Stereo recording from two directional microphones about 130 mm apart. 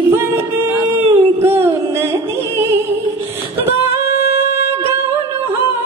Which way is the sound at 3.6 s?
20° right (ahead or behind).